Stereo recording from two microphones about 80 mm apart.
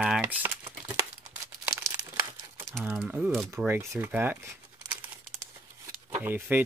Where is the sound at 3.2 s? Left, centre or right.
Centre.